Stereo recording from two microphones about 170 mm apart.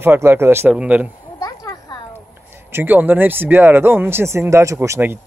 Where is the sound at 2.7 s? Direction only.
10° right (ahead or behind).